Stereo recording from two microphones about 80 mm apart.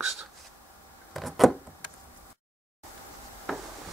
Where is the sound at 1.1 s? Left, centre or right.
Centre.